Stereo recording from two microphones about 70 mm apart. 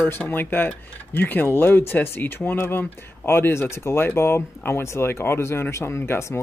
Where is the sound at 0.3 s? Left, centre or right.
Left.